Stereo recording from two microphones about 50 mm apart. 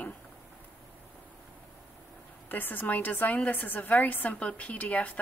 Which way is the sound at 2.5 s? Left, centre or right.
Left.